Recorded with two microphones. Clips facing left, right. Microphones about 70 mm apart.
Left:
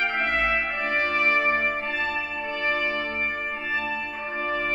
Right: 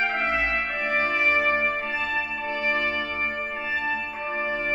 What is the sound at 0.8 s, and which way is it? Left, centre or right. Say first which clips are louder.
Music: right 1 dB; centre.